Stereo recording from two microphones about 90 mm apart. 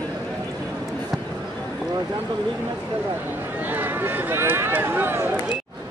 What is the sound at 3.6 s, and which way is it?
Speech, 20° right (ahead or behind).